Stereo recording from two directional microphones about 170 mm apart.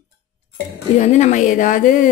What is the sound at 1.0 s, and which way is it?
Speech, 40° left (ahead or behind).